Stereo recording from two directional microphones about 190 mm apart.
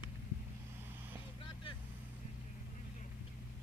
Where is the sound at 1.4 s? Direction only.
25° left (ahead or behind).